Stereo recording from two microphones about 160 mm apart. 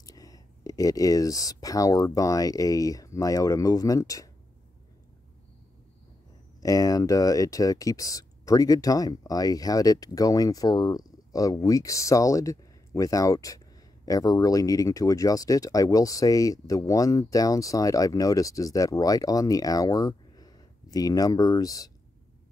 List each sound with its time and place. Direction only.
0.0 s speech: 20° left (ahead or behind)
6.6 s speech: 20° left (ahead or behind)